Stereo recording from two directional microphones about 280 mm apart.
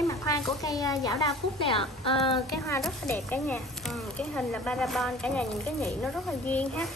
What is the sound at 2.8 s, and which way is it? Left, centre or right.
Speech, centre.